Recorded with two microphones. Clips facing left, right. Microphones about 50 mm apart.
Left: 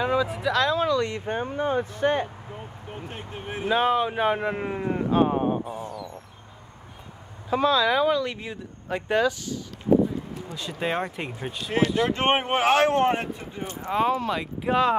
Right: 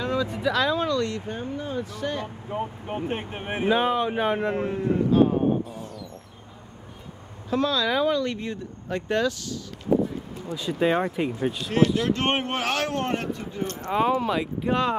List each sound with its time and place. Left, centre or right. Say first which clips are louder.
0.0 s a sound: left 3 dB; centre
0.3 s speech: even; centre
0.8 s speech: left 1 dB; centre
1.1 s speech: left 3 dB; left
2.5 s speech: right 10 dB; right
3.1 s speech: right 5 dB; right
3.6 s speech: even; centre
4.6 s speech: right 3 dB; left
5.8 s dog: left 3 dB; centre
7.4 s speech: left 3 dB; centre
10.5 s speech: right 5 dB; centre
13.9 s speech: right 1 dB; centre